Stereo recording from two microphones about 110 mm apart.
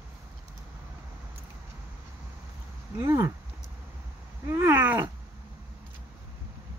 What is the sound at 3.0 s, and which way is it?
Speech, 25° right (ahead or behind).